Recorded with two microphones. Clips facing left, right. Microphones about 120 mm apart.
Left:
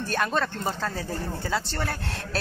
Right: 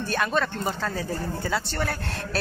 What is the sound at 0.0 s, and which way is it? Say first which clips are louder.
Speech: right 1 dB; 35° left (ahead or behind).